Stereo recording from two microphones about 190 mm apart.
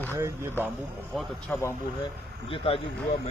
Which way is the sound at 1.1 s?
10° left (ahead or behind).